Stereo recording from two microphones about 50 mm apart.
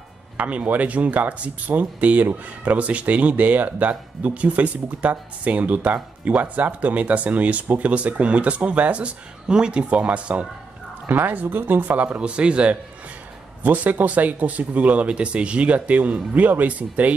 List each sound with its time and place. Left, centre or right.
0.4 s speech: right
11.1 s speech: right
13.6 s speech: right